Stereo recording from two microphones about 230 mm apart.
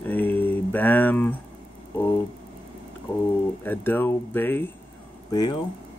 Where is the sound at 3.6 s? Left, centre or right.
Centre.